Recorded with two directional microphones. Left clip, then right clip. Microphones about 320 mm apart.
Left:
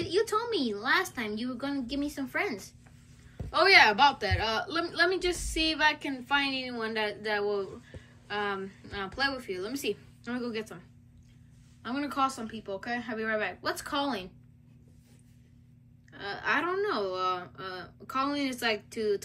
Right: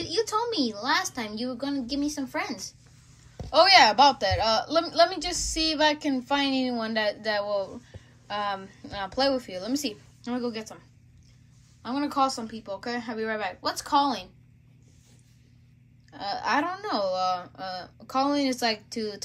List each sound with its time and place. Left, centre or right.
0.0 s speech: centre
11.8 s speech: centre
16.1 s speech: centre